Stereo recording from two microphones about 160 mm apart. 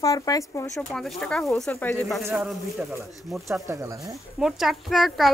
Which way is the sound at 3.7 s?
20° right (ahead or behind).